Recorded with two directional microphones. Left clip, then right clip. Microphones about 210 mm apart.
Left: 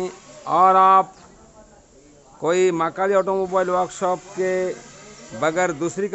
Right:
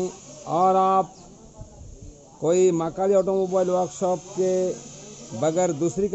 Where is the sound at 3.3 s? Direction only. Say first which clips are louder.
Left 2 dB; 30° left (ahead or behind).